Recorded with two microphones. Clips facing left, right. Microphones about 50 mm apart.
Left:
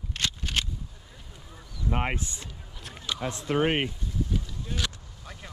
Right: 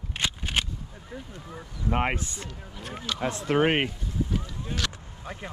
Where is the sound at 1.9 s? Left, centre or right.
Right.